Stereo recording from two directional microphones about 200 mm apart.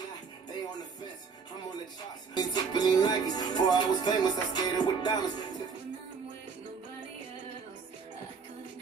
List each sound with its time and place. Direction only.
2.3 s music: 20° left (ahead or behind)